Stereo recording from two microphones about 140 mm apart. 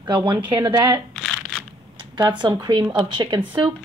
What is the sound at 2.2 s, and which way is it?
A woman's voice, 30° right (ahead or behind).